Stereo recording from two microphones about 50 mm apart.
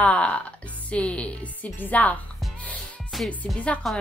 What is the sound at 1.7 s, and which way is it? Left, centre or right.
Speech, left.